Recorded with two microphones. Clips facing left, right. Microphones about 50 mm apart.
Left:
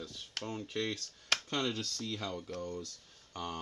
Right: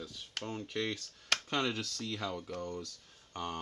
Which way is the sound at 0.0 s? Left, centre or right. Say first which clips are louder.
Even; centre.